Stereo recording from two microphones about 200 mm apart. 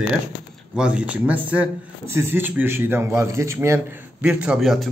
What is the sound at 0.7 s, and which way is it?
A man's voice, 5° right (ahead or behind).